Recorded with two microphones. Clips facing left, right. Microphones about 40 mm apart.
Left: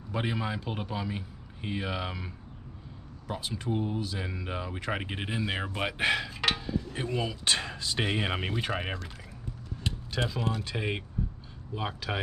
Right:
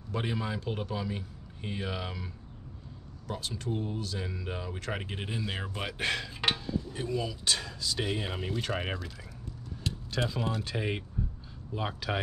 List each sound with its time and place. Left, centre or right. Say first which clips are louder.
0.1 s speech: left 1 dB; centre
7.0 s speech: left 1 dB; left
8.5 s speech: left 1 dB; left
9.8 s speech: left 1 dB; centre